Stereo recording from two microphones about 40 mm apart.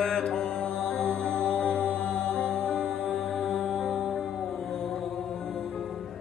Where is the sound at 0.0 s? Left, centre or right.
Centre.